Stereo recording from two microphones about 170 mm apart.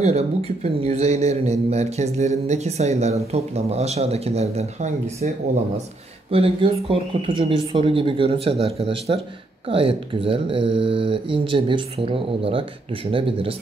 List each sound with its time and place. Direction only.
0.0 s speech: 40° right (ahead or behind)
6.3 s speech: 35° right (ahead or behind)